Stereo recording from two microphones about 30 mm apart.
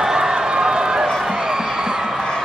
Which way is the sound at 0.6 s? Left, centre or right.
Right.